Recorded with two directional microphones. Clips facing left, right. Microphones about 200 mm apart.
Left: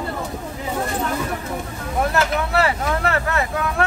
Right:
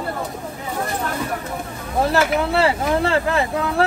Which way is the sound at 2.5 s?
30° right (ahead or behind).